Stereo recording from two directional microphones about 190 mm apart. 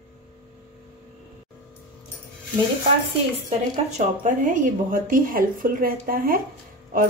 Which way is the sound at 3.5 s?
40° right (ahead or behind).